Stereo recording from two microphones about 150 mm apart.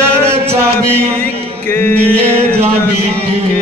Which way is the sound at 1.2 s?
15° left (ahead or behind).